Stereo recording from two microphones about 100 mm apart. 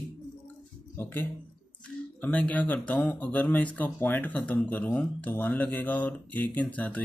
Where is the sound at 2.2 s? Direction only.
15° left (ahead or behind).